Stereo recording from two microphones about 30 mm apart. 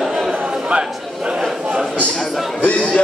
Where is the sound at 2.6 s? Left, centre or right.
Left.